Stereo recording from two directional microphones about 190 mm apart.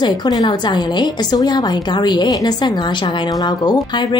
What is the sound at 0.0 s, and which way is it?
A woman's voice, 20° left (ahead or behind).